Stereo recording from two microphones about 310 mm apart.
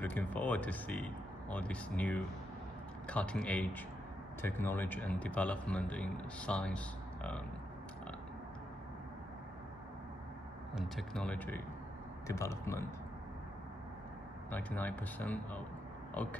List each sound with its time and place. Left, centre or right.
0.0 s speech: centre
10.7 s speech: centre
14.5 s speech: centre